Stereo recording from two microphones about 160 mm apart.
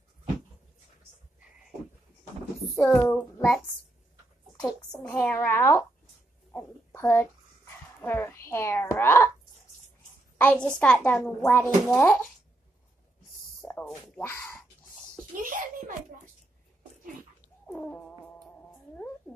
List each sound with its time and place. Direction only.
2.7 s child singing: 15° left (ahead or behind)
5.0 s a child's voice: 10° left (ahead or behind)
10.3 s a woman's voice: 10° left (ahead or behind)
13.6 s a sound: 5° left (ahead or behind)
14.2 s a child's voice: 15° left (ahead or behind)
15.4 s a child's voice: 60° right (ahead or behind)
17.7 s cat: 10° left (ahead or behind)